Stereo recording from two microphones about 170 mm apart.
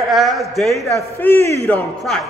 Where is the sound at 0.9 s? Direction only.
20° right (ahead or behind).